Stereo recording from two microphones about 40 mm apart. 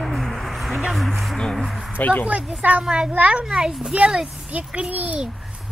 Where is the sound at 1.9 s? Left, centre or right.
Left.